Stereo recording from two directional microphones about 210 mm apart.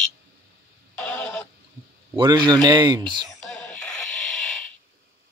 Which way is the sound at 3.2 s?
5° left (ahead or behind).